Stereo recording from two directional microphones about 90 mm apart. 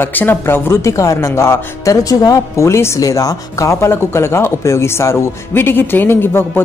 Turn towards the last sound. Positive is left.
turn(degrees=25)  # may be behind; listen again after turning